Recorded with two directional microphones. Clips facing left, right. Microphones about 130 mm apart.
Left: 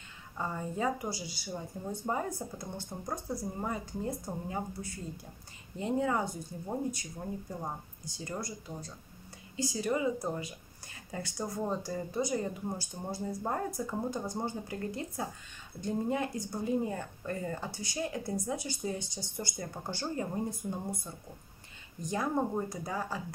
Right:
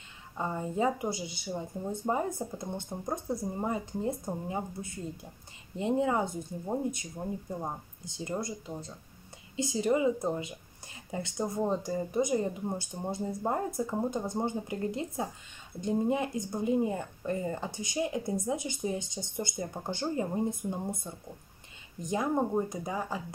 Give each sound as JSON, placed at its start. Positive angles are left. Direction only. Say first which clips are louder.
{"t": 0.4, "sound": "speech", "louder": "right 4 dB", "side_deg": -20}